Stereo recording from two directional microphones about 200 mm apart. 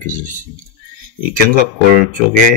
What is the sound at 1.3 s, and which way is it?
Speech, 45° right (ahead or behind).